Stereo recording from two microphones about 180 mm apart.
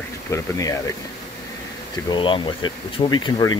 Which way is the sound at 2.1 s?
25° left (ahead or behind).